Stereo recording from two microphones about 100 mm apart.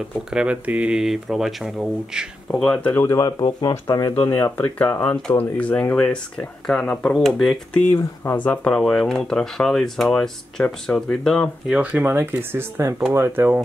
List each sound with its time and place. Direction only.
0.3 s speech: 10° right (ahead or behind)
2.5 s speech: 10° left (ahead or behind)
3.0 s speech: 30° left (ahead or behind)
3.3 s speech: 50° left (ahead or behind)
4.2 s speech: 20° left (ahead or behind); by 7.8 s centre (ahead or behind)
7.9 s speech: 20° left (ahead or behind)
11.7 s speech: 15° right (ahead or behind)